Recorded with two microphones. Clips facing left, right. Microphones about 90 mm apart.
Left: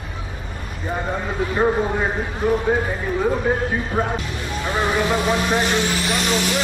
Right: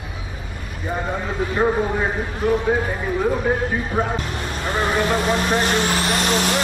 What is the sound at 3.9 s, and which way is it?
Speech, 5° right (ahead or behind).